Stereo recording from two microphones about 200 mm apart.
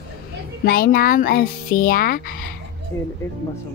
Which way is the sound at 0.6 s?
45° left (ahead or behind).